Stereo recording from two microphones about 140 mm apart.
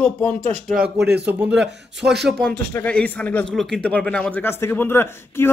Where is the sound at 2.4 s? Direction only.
10° left (ahead or behind).